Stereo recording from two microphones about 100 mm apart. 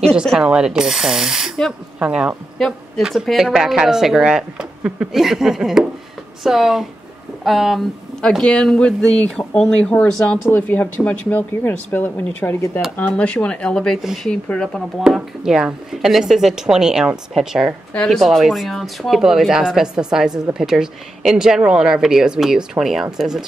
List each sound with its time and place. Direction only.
0.1 s a woman's voice: 5° right (ahead or behind)
15.0 s a woman's voice: 5° right (ahead or behind)